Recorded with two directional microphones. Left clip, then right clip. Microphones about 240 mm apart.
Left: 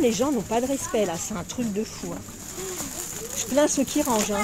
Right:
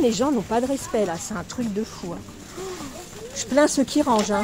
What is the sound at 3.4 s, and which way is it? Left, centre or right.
Speech, centre.